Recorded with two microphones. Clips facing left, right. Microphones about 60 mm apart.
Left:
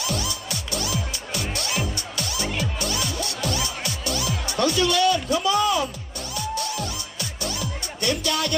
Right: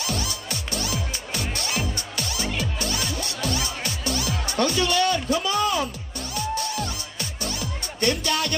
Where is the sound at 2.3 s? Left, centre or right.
Centre.